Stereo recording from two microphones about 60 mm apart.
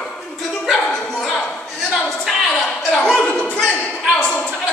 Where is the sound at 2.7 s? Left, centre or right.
Centre.